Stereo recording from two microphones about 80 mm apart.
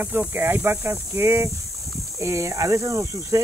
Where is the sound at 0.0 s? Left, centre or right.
Right.